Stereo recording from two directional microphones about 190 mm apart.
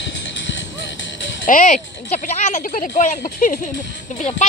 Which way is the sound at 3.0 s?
40° left (ahead or behind).